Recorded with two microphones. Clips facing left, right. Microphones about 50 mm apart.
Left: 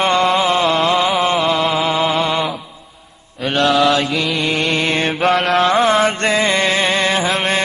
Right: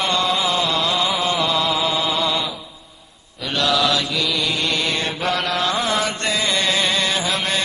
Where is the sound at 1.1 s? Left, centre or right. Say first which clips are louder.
Left 5 dB; left.